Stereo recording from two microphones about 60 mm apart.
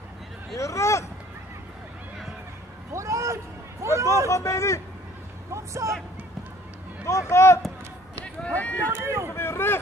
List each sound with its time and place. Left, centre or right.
0.6 s a man's voice: left
2.9 s a sound: right
4.3 s a man's voice: left
5.5 s speech: right
7.1 s speech: left
8.5 s speech: left
9.0 s speech: right
9.3 s boat: left